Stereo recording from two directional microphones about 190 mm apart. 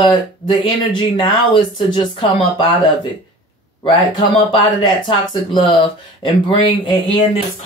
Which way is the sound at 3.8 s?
25° left (ahead or behind).